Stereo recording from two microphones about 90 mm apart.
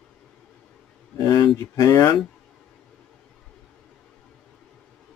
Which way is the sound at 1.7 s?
40° left (ahead or behind).